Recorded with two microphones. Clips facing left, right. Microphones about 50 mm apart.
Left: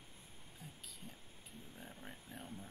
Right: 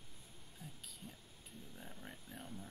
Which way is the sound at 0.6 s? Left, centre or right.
Centre.